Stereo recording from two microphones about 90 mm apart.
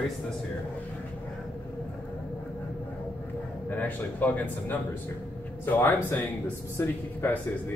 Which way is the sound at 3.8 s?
20° left (ahead or behind).